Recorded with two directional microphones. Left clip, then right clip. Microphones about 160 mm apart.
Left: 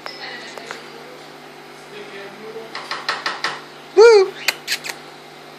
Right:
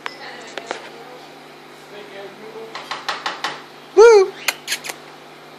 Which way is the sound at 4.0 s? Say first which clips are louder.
Even; 10° right (ahead or behind).